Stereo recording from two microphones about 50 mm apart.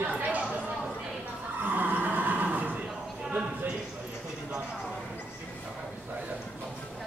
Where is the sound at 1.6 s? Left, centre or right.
Right.